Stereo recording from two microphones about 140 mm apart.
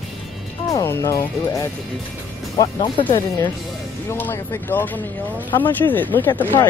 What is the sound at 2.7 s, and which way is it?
Speech, 35° left (ahead or behind).